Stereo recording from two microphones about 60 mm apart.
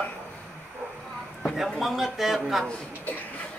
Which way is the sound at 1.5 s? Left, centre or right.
Centre.